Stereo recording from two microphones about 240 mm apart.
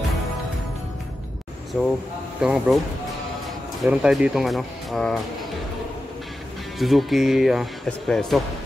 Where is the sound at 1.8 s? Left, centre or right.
Centre.